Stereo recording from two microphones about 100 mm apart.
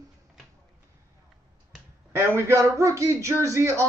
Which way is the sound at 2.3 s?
30° right (ahead or behind).